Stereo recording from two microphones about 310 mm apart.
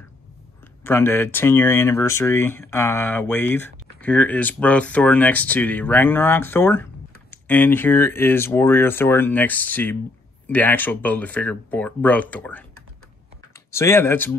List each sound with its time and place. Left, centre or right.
0.8 s speech: centre
13.7 s speech: centre